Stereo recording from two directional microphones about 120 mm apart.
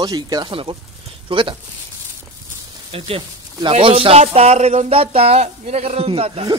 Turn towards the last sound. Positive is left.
turn(degrees=-55)  # may be behind; listen again after turning